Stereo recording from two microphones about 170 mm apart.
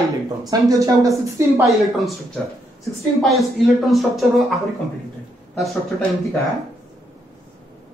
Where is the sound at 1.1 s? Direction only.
Centre (ahead or behind).